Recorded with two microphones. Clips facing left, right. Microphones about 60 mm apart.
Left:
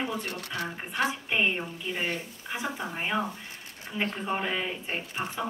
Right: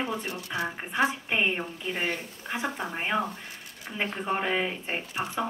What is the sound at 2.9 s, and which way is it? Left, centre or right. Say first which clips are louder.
Speech: right 2 dB; centre.